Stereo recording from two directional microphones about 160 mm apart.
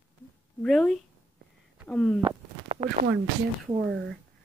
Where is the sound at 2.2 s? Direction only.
35° right (ahead or behind).